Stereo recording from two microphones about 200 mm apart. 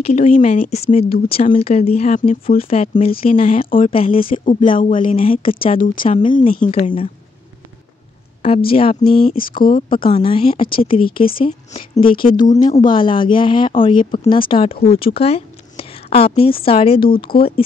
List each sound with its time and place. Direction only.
0.0 s speech: 35° left (ahead or behind)
3.3 s speech: 45° left (ahead or behind)
3.9 s speech: 30° left (ahead or behind)
6.6 s speech: 40° left (ahead or behind)
8.6 s speech: 25° left (ahead or behind)
12.3 s speech: 40° left (ahead or behind)
12.5 s speech: 20° left (ahead or behind)